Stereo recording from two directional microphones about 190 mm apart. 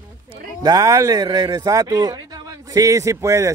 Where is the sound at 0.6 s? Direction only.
20° right (ahead or behind).